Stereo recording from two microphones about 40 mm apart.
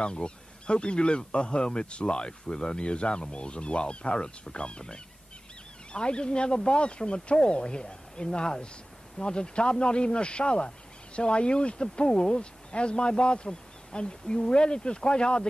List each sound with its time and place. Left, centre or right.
0.0 s speech: left
12.1 s speech: centre
12.4 s speech: left